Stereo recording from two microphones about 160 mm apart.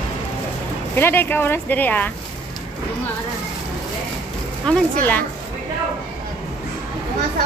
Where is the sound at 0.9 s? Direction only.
15° left (ahead or behind).